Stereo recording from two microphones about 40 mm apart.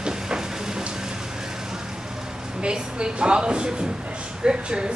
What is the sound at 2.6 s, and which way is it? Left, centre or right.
A woman's voice, right.